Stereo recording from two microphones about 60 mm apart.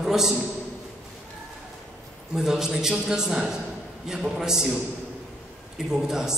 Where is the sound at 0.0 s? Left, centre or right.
Centre.